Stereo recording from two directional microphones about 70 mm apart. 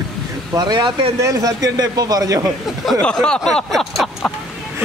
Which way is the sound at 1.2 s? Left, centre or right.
Right.